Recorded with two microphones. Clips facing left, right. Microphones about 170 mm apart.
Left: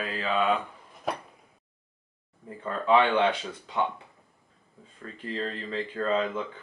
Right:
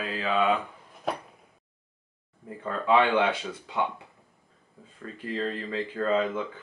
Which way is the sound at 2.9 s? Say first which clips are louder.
Even; 10° right (ahead or behind).